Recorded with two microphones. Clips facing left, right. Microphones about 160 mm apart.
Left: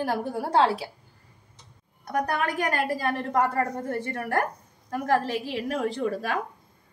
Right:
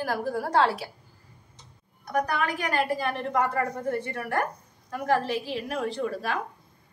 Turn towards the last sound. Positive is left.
turn(degrees=40)  # may be behind; listen again after turning